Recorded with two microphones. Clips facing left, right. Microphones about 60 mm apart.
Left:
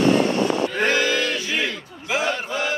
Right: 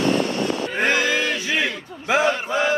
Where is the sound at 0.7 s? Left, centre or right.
Right.